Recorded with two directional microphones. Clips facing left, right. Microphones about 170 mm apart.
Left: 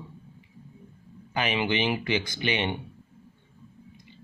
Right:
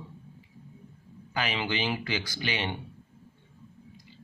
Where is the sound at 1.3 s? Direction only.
20° left (ahead or behind).